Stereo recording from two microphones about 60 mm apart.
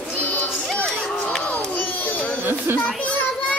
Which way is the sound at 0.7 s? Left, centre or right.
Centre.